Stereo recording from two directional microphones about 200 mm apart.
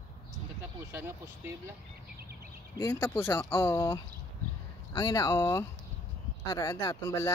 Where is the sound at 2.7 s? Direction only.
15° left (ahead or behind).